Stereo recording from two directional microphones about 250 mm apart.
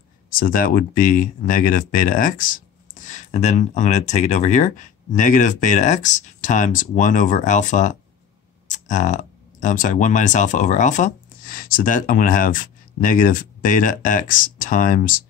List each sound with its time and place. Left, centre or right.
0.3 s speech: left